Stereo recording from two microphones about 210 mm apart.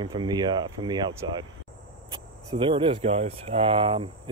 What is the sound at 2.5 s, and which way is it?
Speech, 25° right (ahead or behind).